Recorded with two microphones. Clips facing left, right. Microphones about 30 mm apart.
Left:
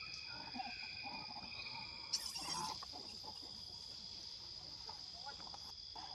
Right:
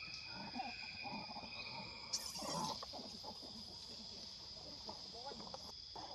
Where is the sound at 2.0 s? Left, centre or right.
Left.